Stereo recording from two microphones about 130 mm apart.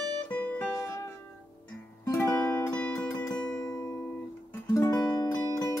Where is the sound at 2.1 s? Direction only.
20° left (ahead or behind).